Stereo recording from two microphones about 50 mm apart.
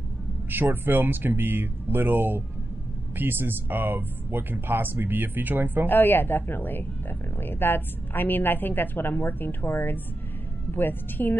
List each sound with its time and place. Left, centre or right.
0.5 s speech: right
5.9 s a woman's voice: left